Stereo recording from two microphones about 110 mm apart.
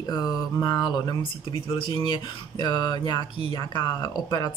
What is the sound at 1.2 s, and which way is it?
Speech, 50° left (ahead or behind).